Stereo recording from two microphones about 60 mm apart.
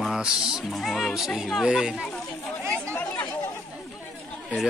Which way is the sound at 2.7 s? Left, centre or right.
Left.